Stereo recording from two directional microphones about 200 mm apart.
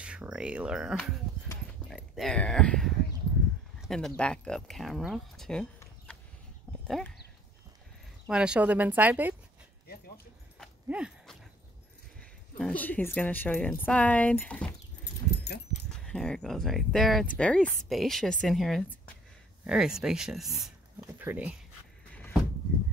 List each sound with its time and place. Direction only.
0.0 s speech: 5° right (ahead or behind)
8.3 s speech: 5° right (ahead or behind)
10.6 s horse: 5° right (ahead or behind)
12.2 s speech: 5° left (ahead or behind)
15.4 s dog: 55° left (ahead or behind)
16.1 s speech: 5° left (ahead or behind)